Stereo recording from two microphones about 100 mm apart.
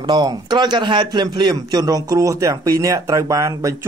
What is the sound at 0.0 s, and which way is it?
A man's voice, 45° right (ahead or behind).